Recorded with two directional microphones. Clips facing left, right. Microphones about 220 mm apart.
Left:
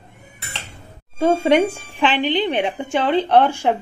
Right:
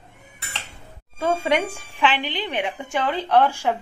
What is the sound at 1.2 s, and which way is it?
A woman's voice, 30° left (ahead or behind).